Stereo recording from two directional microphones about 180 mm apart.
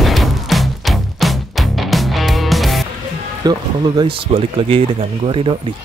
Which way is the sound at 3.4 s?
25° right (ahead or behind).